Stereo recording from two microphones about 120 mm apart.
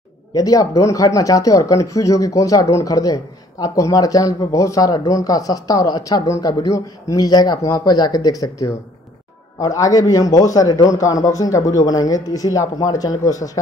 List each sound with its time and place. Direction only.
0.3 s speech: 30° left (ahead or behind)